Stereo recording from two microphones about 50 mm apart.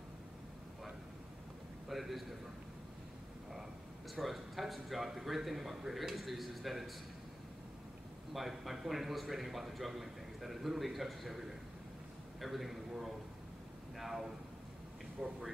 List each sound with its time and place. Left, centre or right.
1.9 s a man's voice: centre
4.1 s a man's voice: centre
8.3 s a man's voice: centre
15.2 s speech: right